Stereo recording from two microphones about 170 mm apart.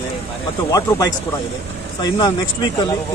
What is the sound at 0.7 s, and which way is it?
Speech, 20° left (ahead or behind).